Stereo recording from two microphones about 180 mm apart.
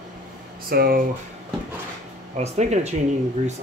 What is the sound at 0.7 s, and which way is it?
Speech, 60° right (ahead or behind).